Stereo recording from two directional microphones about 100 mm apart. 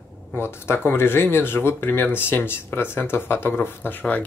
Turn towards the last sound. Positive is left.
turn(degrees=20)  # may be behind; listen again after turning